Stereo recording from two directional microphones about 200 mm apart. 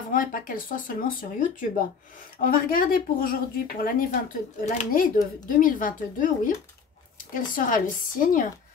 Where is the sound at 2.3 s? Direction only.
45° left (ahead or behind).